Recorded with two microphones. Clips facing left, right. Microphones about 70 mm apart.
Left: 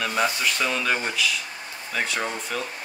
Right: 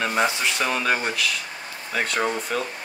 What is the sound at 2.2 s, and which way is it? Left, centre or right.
Speech, centre.